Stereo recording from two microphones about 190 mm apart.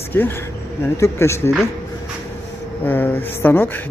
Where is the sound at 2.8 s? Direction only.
10° left (ahead or behind).